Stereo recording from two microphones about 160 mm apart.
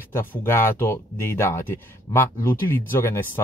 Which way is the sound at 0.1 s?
15° left (ahead or behind).